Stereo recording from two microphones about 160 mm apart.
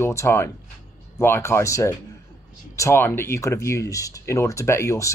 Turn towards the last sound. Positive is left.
turn(degrees=20)  # may be behind; listen again after turning